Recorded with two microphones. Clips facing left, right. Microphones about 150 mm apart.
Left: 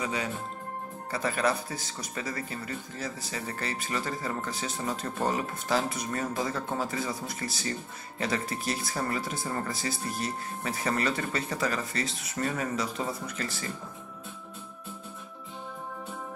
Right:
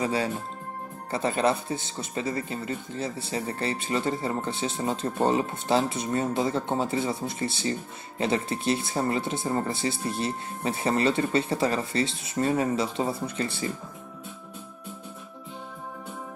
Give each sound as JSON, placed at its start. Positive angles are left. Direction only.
{"t": 0.0, "sound": "speech", "side_deg": -30}